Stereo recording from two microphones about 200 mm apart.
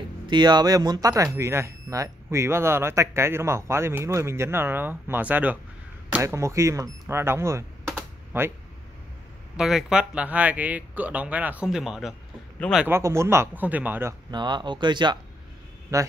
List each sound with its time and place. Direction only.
0.3 s speech: 20° right (ahead or behind)
7.8 s typing: 10° right (ahead or behind)
9.6 s speech: centre (ahead or behind)
12.8 s speech: 15° right (ahead or behind)
14.3 s speech: 20° right (ahead or behind)